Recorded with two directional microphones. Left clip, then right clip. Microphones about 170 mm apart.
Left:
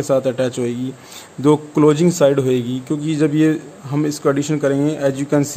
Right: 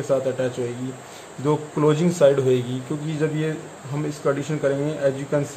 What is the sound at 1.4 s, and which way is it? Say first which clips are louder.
A man's voice: left 7 dB; 80° left.